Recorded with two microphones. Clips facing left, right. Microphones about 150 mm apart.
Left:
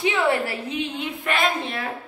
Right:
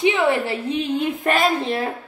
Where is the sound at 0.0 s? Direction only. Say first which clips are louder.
Right 3 dB; 20° right (ahead or behind).